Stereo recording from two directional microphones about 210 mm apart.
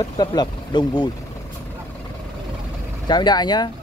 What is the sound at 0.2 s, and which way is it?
Speech, 20° left (ahead or behind).